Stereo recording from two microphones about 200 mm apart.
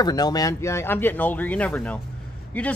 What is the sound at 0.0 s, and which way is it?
Speech, 20° left (ahead or behind).